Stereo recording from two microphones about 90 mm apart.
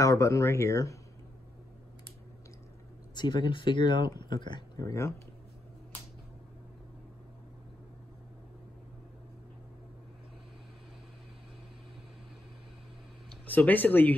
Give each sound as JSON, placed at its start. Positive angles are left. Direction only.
{"t": 0.0, "sound": "speech", "side_deg": 35}
{"t": 3.2, "sound": "speech", "side_deg": 55}
{"t": 4.7, "sound": "speech", "side_deg": 40}
{"t": 13.5, "sound": "speech", "side_deg": 20}